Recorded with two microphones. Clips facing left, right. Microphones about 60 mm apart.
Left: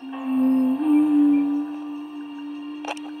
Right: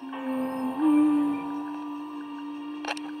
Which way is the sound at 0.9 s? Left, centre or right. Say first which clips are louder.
Left 7 dB; centre.